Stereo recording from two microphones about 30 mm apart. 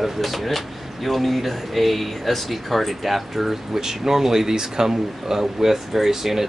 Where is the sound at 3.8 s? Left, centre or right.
Centre.